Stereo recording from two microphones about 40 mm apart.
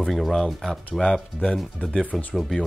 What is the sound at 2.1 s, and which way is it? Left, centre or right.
Speech, left.